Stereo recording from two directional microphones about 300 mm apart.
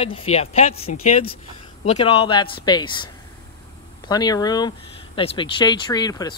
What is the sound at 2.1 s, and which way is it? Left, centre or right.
Speech, centre.